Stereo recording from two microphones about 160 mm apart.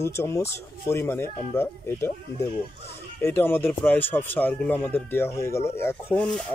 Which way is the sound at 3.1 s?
15° left (ahead or behind).